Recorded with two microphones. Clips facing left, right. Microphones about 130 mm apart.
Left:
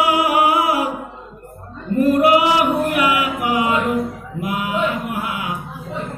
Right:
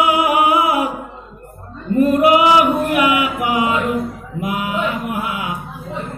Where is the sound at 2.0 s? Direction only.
20° right (ahead or behind).